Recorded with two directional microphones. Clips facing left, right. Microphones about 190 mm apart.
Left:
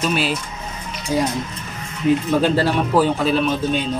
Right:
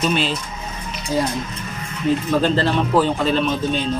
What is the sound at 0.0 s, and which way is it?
Speech, 5° left (ahead or behind).